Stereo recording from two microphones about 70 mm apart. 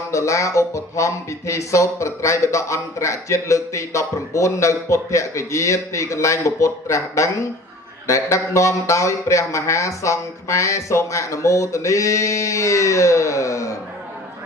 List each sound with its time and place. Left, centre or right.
0.1 s speech: left